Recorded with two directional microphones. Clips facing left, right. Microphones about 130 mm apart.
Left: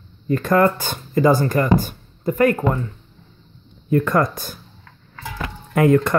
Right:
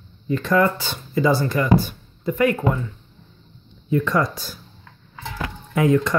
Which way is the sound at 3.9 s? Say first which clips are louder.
Left 3 dB; 50° left (ahead or behind).